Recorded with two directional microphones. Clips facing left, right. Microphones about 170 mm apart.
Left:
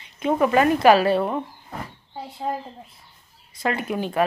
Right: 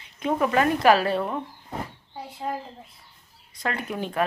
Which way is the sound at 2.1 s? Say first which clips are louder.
Left 3 dB; 25° left (ahead or behind).